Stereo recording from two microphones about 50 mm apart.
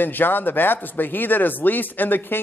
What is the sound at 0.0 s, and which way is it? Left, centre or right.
A man's voice, left.